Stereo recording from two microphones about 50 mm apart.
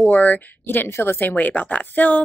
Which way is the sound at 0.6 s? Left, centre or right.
Left.